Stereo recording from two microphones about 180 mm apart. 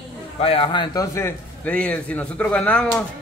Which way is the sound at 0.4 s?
30° left (ahead or behind).